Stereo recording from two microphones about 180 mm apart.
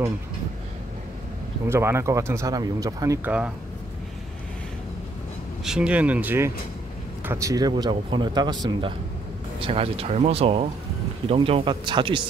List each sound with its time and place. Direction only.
1.7 s speech: 15° right (ahead or behind)
5.6 s speech: 5° right (ahead or behind); by 8.5 s 25° right (ahead or behind)
9.6 s speech: 30° right (ahead or behind)